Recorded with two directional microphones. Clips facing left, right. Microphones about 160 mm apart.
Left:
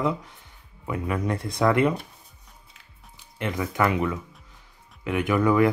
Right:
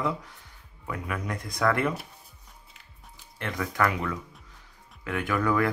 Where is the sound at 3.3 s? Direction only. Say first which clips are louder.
Left 3 dB; 20° left (ahead or behind).